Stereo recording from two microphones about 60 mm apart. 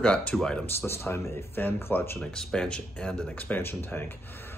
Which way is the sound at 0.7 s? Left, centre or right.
Left.